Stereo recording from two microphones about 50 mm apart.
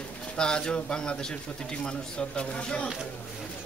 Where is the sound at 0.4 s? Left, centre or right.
Centre.